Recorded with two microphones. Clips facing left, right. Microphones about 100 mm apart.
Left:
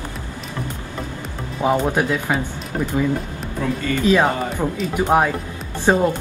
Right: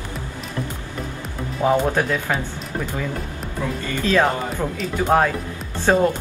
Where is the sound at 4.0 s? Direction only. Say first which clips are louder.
Left 1 dB; 15° left (ahead or behind).